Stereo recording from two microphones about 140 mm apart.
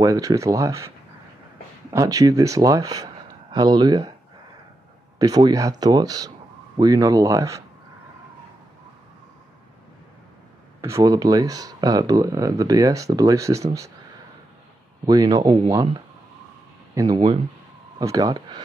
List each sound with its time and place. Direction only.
0.0 s speech: 25° right (ahead or behind)
5.2 s speech: 25° right (ahead or behind)
10.8 s speech: 20° right (ahead or behind)
15.0 s speech: 25° right (ahead or behind)